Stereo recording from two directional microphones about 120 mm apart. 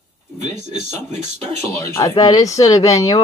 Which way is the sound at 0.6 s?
75° right (ahead or behind).